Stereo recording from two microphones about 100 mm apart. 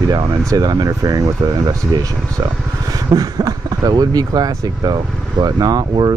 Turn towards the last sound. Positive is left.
turn(degrees=-45)  # may be behind; listen again after turning